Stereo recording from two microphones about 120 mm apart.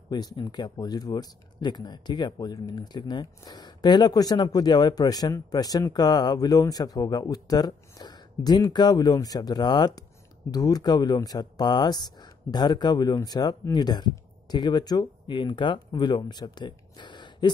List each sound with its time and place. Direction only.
0.1 s speech: 35° left (ahead or behind)